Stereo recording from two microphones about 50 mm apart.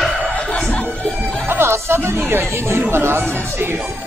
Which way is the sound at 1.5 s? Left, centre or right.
Right.